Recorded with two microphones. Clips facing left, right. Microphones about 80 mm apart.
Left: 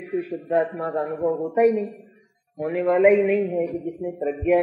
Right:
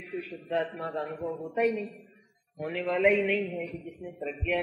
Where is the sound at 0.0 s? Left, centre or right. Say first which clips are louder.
Left 10 dB; left.